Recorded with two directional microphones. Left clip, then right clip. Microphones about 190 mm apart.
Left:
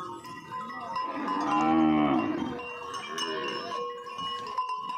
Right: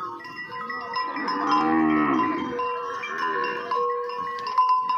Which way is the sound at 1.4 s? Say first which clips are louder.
Right 3 dB; 70° left (ahead or behind).